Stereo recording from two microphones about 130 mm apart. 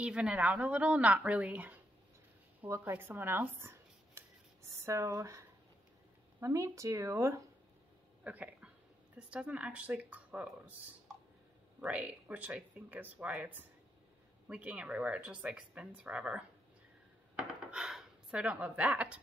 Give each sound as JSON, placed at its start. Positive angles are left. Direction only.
{"t": 0.0, "sound": "speech", "side_deg": -5}
{"t": 6.4, "sound": "speech", "side_deg": -25}
{"t": 8.2, "sound": "a sound", "side_deg": -10}
{"t": 9.3, "sound": "speech", "side_deg": -10}